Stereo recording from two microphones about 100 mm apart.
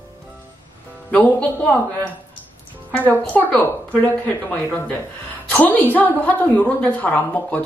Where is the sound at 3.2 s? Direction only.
10° left (ahead or behind).